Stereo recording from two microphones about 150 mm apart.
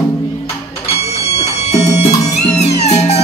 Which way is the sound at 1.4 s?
45° left (ahead or behind).